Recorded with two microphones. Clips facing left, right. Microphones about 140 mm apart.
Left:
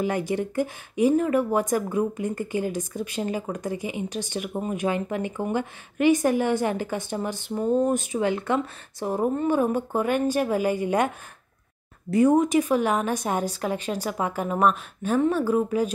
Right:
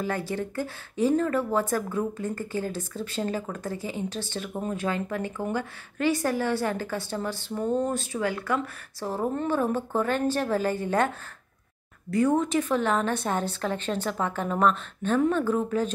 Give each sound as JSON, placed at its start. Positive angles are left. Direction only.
{"t": 0.0, "sound": "speech", "side_deg": 15}
{"t": 12.1, "sound": "speech", "side_deg": 20}